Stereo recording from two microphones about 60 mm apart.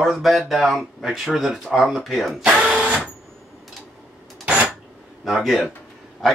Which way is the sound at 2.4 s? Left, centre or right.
Centre.